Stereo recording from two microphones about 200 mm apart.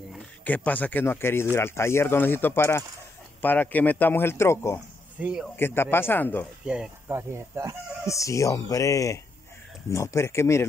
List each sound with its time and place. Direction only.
0.1 s speech: 10° left (ahead or behind)
5.2 s speech: 5° right (ahead or behind)
5.6 s speech: 10° left (ahead or behind)
6.6 s speech: 5° right (ahead or behind)
8.1 s speech: 15° left (ahead or behind)